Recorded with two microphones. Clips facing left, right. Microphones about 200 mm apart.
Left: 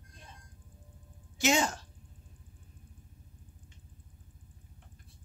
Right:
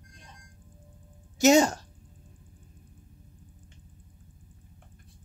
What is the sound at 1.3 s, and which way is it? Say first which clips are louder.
Speech: right 9 dB; 40° right (ahead or behind).